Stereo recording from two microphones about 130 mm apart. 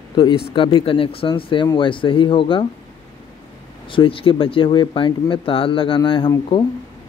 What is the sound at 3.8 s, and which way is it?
Speech, 45° left (ahead or behind).